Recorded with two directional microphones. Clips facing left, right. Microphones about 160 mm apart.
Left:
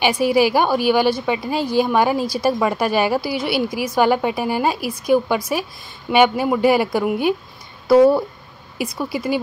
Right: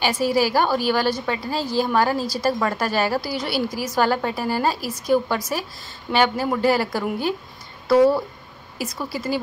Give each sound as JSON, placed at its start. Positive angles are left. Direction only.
{"t": 0.0, "sound": "a woman's voice", "side_deg": 15}